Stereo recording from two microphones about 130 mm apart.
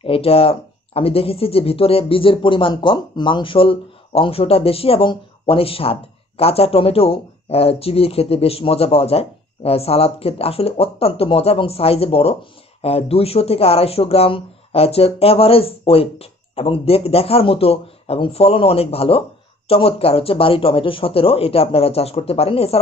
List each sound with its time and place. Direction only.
0.0 s speech: 45° left (ahead or behind)